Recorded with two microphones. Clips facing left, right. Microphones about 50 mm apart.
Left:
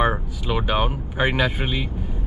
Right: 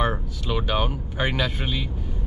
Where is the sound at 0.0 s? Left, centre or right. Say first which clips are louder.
Left 3 dB; centre.